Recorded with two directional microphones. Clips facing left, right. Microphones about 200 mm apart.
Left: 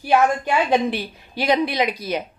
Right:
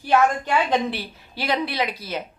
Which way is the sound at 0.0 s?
10° left (ahead or behind).